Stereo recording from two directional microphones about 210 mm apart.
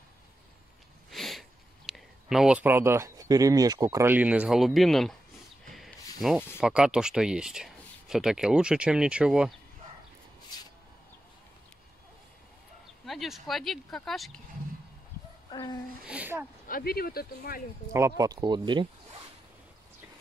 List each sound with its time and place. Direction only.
1.1 s sniff: centre (ahead or behind)
1.9 s speech: centre (ahead or behind)
5.7 s a sound: centre (ahead or behind)
6.2 s speech: centre (ahead or behind)
13.0 s speech: centre (ahead or behind)
15.5 s speech: 20° left (ahead or behind)
16.1 s speech: 10° right (ahead or behind)
16.6 s speech: 45° left (ahead or behind)
17.9 s speech: 15° right (ahead or behind)